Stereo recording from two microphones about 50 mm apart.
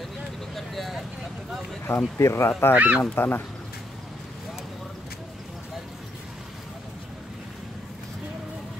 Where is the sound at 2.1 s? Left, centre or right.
Left.